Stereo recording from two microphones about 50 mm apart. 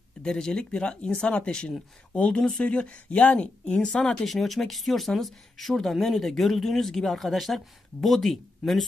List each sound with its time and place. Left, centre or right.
0.2 s speech: centre